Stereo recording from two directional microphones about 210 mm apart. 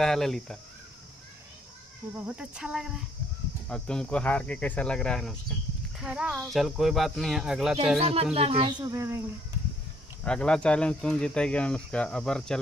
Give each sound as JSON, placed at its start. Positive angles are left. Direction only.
{"t": 0.0, "sound": "speech", "side_deg": 0}
{"t": 2.2, "sound": "speech", "side_deg": -5}
{"t": 8.0, "sound": "speech", "side_deg": -30}
{"t": 10.2, "sound": "speech", "side_deg": 5}